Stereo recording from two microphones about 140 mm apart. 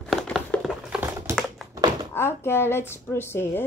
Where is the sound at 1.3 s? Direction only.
20° right (ahead or behind).